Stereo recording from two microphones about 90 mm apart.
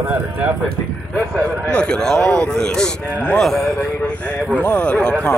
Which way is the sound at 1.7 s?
10° left (ahead or behind).